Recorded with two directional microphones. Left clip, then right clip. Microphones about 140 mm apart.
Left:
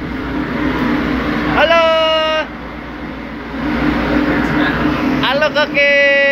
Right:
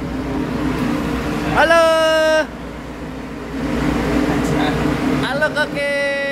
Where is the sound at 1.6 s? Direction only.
60° right (ahead or behind).